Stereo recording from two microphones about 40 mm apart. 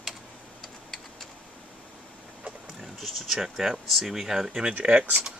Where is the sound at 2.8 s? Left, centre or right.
Centre.